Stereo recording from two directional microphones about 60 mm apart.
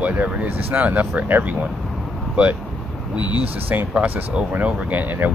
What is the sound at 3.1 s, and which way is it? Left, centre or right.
Speech, right.